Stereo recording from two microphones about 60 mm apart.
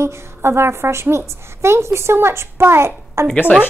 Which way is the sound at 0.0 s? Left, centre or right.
Right.